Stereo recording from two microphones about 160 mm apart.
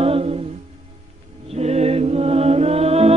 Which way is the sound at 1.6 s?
40° right (ahead or behind).